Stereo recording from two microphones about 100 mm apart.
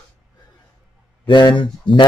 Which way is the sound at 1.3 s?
50° left (ahead or behind).